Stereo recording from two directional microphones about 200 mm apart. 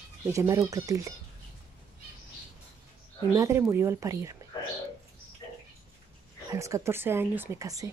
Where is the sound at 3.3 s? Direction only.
15° right (ahead or behind).